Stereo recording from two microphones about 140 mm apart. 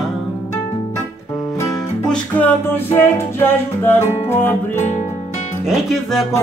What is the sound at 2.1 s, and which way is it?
A capella, 10° left (ahead or behind).